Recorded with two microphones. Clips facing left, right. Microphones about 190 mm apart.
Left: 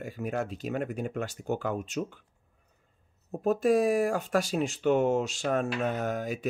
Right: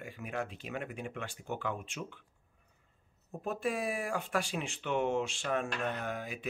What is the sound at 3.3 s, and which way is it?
Speech, 40° left (ahead or behind).